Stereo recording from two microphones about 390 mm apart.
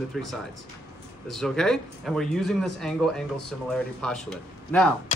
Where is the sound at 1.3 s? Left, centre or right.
Centre.